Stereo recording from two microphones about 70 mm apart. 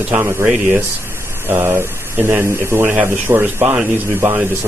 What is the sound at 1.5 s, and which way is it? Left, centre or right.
Speech, right.